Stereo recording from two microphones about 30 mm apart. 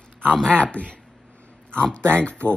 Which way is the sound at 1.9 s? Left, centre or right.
Left.